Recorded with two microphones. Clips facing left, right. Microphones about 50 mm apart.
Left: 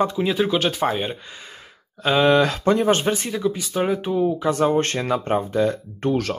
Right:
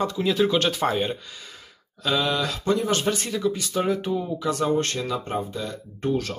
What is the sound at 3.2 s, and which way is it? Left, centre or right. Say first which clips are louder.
Speech: left 2 dB; centre.